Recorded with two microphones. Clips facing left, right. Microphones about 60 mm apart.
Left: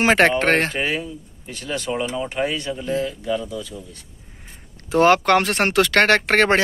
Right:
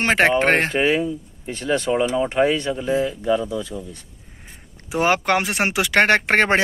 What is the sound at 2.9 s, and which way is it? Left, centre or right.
Speech, right.